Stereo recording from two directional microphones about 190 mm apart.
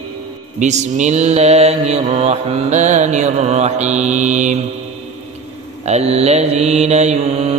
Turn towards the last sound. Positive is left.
turn(degrees=-30)  # may be behind; listen again after turning